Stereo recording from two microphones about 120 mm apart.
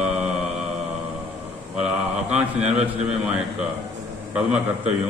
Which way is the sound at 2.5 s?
65° right (ahead or behind).